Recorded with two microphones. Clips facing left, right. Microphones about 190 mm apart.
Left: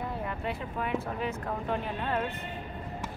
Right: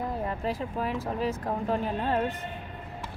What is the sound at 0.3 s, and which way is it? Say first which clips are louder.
Speech: right 4 dB; 35° right (ahead or behind).